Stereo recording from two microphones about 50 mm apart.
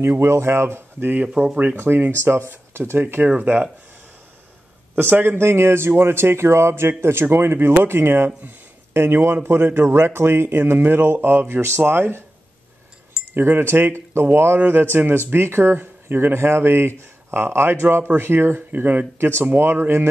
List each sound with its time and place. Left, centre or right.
0.0 s speech: right
1.0 s speech: right
1.8 s speech: right
3.3 s speech: right
4.9 s speech: right
5.4 s speech: right
13.3 s speech: right
18.0 s speech: right
18.7 s speech: right
19.1 s speech: right